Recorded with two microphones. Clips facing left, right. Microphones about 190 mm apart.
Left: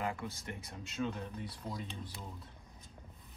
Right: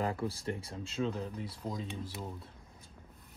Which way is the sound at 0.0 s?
35° right (ahead or behind).